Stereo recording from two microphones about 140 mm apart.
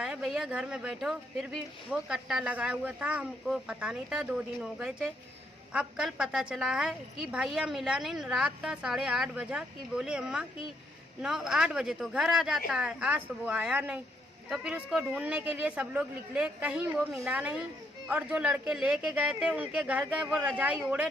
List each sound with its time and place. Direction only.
0.0 s speech: 5° right (ahead or behind)